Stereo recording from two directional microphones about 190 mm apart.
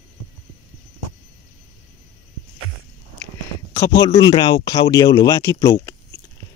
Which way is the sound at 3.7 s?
20° left (ahead or behind).